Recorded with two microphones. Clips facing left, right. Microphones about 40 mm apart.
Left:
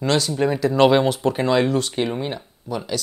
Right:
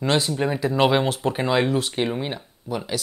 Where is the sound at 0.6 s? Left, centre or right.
Centre.